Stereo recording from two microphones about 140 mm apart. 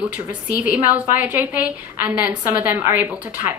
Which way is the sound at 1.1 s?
10° right (ahead or behind).